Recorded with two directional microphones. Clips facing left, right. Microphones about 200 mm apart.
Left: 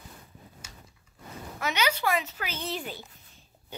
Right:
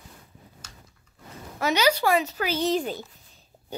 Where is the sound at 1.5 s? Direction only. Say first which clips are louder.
Right 7 dB; 35° right (ahead or behind).